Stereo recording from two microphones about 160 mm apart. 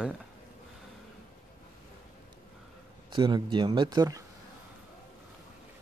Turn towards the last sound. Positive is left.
turn(degrees=-25)  # may be behind; listen again after turning